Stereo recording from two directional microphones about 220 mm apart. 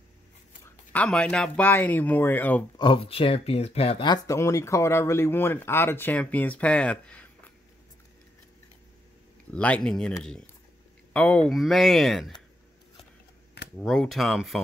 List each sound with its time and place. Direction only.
0.9 s speech: 5° left (ahead or behind)
2.8 s speech: 25° left (ahead or behind); by 7.5 s 5° left (ahead or behind)
9.5 s speech: 5° left (ahead or behind)
13.7 s speech: centre (ahead or behind)